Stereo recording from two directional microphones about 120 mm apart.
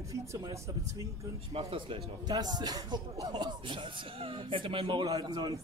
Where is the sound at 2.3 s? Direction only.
35° right (ahead or behind).